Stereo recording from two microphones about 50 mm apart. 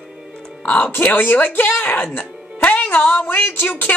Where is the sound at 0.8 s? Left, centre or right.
Left.